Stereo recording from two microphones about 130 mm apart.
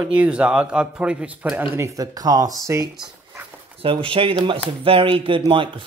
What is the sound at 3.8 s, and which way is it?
Speech, 45° right (ahead or behind).